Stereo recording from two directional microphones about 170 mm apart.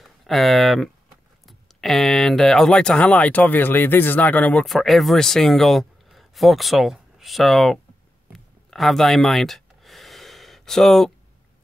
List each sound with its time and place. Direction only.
0.0 s speech: centre (ahead or behind)
8.6 s gasp: centre (ahead or behind)